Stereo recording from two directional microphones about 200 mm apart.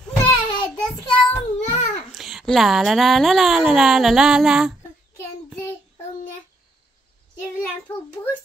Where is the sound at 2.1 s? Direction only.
Centre (ahead or behind).